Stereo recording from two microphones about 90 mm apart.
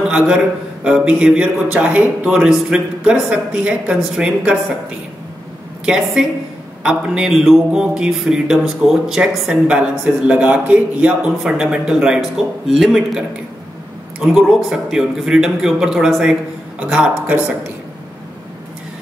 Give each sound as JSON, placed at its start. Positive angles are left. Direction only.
{"t": 0.8, "sound": "speech", "side_deg": -10}
{"t": 6.2, "sound": "speech", "side_deg": -5}
{"t": 14.2, "sound": "a man's voice", "side_deg": -5}